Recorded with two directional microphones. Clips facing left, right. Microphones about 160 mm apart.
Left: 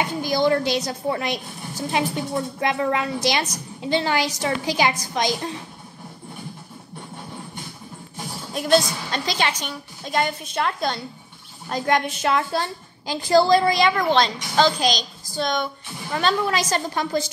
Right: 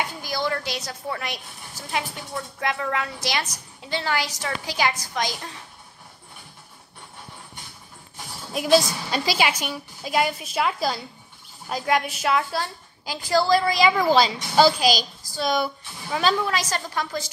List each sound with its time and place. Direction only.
0.0 s a woman's voice: 20° left (ahead or behind)
8.5 s a child's voice: 5° right (ahead or behind)
16.6 s a woman's voice: 25° left (ahead or behind)